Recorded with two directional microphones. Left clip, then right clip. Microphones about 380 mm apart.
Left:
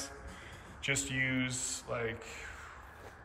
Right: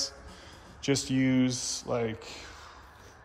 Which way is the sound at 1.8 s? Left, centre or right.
Centre.